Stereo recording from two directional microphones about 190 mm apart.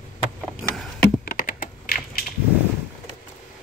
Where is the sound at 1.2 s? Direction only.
50° left (ahead or behind).